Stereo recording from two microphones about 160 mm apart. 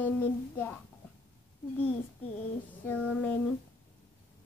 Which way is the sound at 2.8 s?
10° left (ahead or behind).